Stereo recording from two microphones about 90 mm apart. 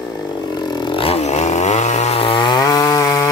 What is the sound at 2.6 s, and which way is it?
Chainsaw, 45° left (ahead or behind).